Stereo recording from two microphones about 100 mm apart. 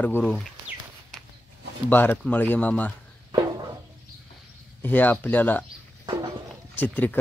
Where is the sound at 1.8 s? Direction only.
20° left (ahead or behind).